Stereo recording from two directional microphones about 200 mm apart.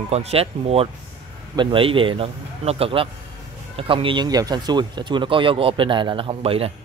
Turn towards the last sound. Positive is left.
turn(degrees=-30)  # may be behind; listen again after turning